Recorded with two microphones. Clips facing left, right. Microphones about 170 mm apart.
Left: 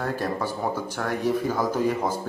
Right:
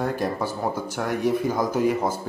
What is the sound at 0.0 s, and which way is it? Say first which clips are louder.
Speech: right 2 dB; 10° right (ahead or behind).